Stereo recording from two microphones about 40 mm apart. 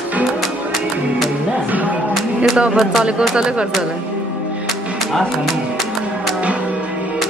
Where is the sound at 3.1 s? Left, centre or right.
Right.